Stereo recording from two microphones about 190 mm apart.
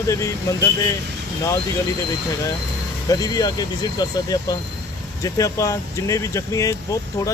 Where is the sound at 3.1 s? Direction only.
20° left (ahead or behind).